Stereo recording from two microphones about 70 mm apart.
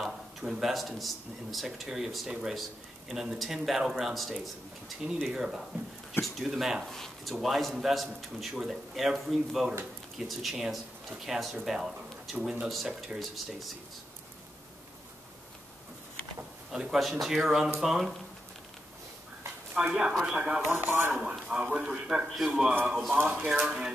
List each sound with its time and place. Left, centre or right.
0.0 s a man's voice: centre
6.9 s speech: centre
16.7 s a man's voice: centre
19.7 s a man's voice: centre
20.6 s speech: right
21.3 s a man's voice: centre
23.1 s speech: right